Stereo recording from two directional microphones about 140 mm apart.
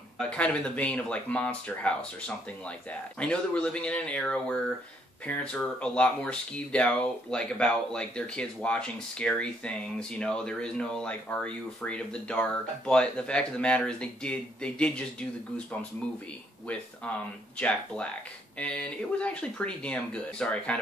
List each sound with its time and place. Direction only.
0.2 s speech: 5° left (ahead or behind)
16.6 s speech: 10° left (ahead or behind)